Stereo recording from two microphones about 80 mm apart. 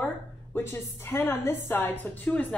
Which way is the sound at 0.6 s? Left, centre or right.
Left.